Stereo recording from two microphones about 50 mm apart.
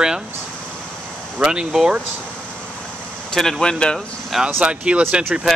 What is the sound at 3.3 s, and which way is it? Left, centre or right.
Speech, centre.